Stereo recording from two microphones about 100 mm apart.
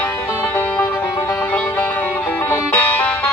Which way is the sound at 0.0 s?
20° left (ahead or behind).